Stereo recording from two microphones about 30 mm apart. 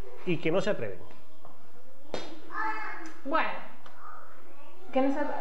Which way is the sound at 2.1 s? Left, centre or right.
Centre.